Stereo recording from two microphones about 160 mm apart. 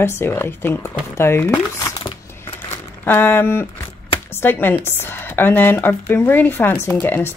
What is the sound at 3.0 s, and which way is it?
Speech, 15° left (ahead or behind).